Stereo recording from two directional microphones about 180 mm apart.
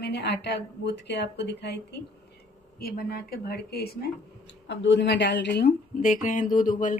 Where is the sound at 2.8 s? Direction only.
60° left (ahead or behind).